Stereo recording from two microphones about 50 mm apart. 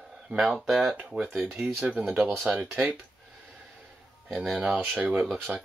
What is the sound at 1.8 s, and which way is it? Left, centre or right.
Speech, right.